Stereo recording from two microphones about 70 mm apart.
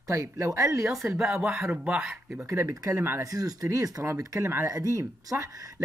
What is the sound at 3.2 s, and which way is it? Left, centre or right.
Speech, right.